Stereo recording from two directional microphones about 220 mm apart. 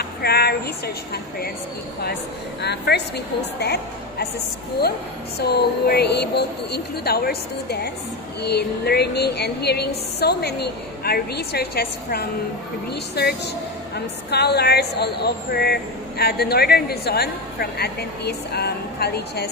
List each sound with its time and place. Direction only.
0.2 s a woman's voice: 45° left (ahead or behind)
2.6 s a man's voice: 50° left (ahead or behind)
5.4 s a man's voice: 50° left (ahead or behind)